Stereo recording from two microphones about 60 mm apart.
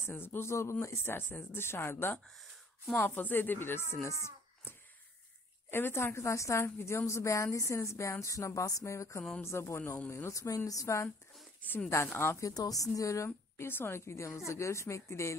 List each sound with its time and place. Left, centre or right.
0.1 s speech: left
5.7 s a woman's voice: left
9.8 s a woman's voice: left
12.4 s speech: left
13.7 s a woman's voice: left